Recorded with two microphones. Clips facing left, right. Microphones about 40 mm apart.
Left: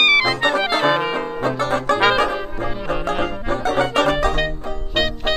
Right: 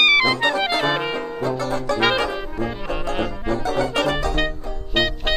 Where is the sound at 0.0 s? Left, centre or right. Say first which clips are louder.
Left 1 dB; centre.